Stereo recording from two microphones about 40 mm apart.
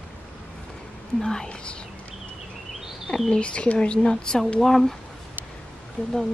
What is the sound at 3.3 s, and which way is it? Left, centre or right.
Speech, left.